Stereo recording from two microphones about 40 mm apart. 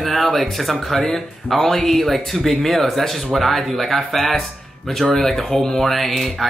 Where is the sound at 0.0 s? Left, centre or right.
Centre.